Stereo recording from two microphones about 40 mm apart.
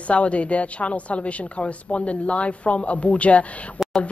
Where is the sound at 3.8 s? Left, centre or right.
Centre.